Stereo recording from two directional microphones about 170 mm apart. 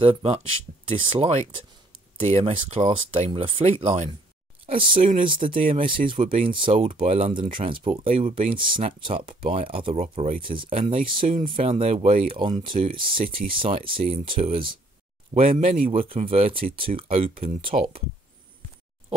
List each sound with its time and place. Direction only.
0.0 s speech: 35° right (ahead or behind)